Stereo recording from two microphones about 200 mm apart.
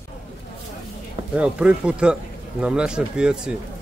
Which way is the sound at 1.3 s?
5° right (ahead or behind).